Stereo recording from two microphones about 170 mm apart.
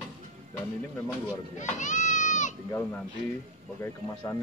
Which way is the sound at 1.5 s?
45° left (ahead or behind).